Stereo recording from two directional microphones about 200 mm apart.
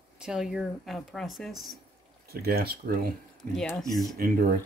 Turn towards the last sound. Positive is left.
turn(degrees=-50)  # may be behind; listen again after turning